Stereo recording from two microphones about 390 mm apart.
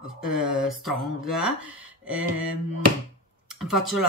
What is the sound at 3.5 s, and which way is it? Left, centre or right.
Speech, centre.